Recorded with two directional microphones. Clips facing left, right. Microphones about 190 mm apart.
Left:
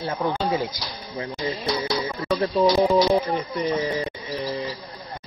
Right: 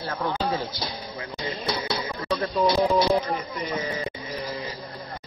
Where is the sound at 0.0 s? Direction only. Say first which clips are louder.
Left 3 dB; 20° left (ahead or behind).